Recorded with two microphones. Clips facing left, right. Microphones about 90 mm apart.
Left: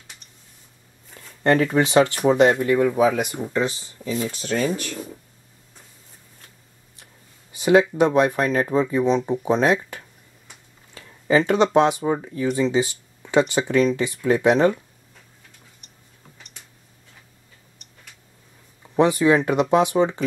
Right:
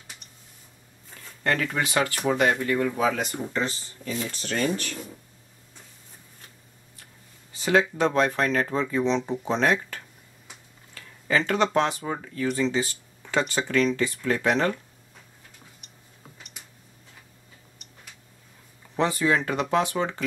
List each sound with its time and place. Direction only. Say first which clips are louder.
1.4 s speech: left 8 dB; 25° left (ahead or behind); by 4.9 s 5° left (ahead or behind)
7.5 s speech: left 6 dB; 15° left (ahead or behind)
18.9 s speech: left 6 dB; 20° left (ahead or behind)